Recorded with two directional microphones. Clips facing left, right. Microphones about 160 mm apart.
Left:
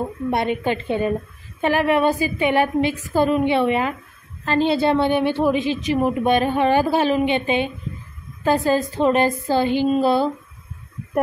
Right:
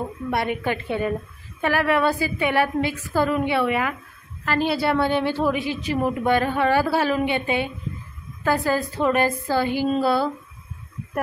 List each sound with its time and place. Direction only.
0.0 s a woman's voice: 25° left (ahead or behind)